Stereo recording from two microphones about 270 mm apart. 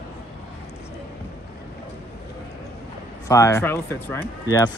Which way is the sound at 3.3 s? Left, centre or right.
Centre.